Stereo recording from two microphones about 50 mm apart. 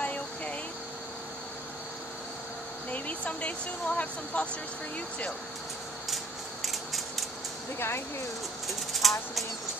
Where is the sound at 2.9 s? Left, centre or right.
Left.